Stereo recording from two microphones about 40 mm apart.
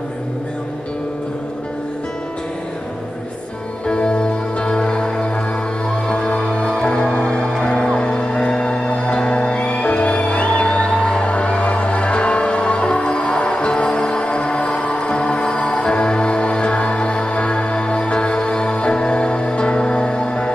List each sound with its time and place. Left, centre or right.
3.8 s music: left